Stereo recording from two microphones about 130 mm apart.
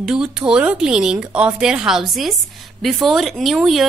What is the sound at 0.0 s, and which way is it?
A woman's voice, 5° right (ahead or behind).